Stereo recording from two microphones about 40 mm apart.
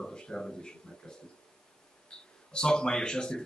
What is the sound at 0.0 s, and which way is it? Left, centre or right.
Speech, left.